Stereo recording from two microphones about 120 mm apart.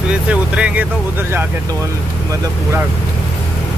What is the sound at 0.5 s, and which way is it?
Speech, 10° right (ahead or behind).